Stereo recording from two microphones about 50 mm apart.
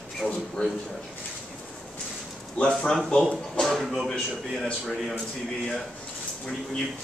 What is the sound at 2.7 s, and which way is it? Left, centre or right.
A man's voice, centre.